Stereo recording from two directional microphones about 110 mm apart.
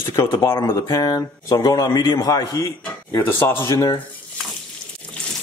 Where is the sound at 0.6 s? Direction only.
40° left (ahead or behind); by 3.9 s 25° left (ahead or behind).